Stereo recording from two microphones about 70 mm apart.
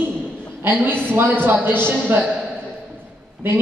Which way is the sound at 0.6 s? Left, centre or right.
Right.